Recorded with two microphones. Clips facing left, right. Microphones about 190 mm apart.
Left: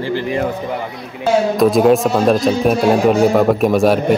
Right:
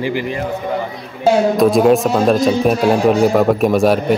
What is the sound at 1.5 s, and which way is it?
Speech, centre (ahead or behind).